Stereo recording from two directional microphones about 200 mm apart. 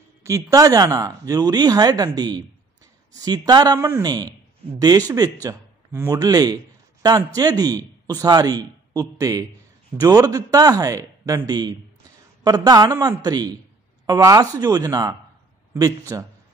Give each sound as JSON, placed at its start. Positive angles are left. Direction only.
{"t": 0.2, "sound": "speech", "side_deg": -15}